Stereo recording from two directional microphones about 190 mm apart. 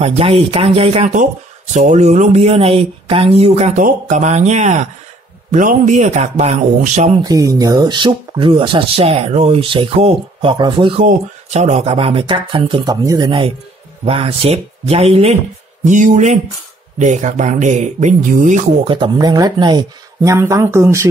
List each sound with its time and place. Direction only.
0.0 s speech: 30° right (ahead or behind)
7.2 s speech: 20° right (ahead or behind)
11.1 s speech: 40° right (ahead or behind); by 13.3 s 20° right (ahead or behind)
14.0 s speech: 30° right (ahead or behind)
18.9 s speech: 25° right (ahead or behind)